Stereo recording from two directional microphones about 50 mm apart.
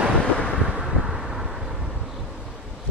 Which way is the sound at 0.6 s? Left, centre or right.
Centre.